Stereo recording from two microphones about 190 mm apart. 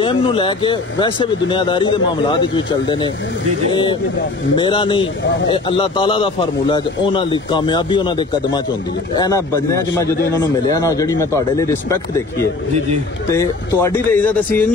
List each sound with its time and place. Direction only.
0.0 s speech: 25° left (ahead or behind)
4.6 s a man's voice: 25° left (ahead or behind)
13.3 s a man's voice: 15° left (ahead or behind)